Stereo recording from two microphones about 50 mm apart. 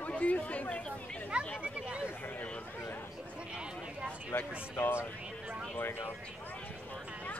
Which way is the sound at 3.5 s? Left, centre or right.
Centre.